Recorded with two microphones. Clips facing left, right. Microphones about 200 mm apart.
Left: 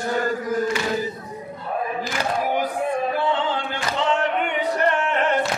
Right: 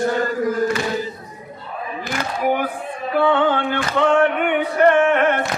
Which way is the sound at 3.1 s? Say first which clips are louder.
Right 6 dB; 60° right (ahead or behind).